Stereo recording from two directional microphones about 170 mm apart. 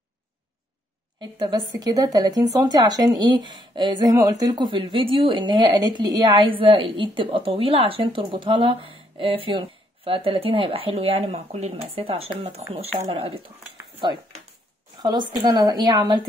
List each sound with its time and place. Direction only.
1.7 s speech: 20° right (ahead or behind)
15.0 s speech: 25° right (ahead or behind)